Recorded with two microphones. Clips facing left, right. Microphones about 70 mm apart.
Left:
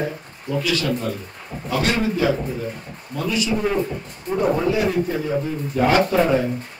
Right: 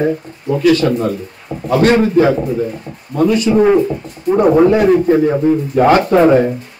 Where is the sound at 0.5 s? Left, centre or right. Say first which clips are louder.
Right 10 dB; right.